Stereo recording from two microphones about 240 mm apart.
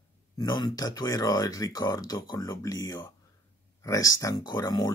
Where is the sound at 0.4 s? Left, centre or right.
Centre.